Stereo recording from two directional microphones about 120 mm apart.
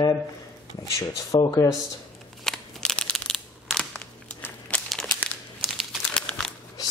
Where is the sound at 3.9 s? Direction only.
15° left (ahead or behind).